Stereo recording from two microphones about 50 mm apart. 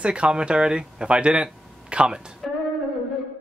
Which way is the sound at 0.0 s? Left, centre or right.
Right.